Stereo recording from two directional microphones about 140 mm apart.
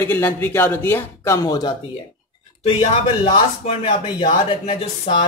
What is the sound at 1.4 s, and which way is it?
Speech, 30° left (ahead or behind).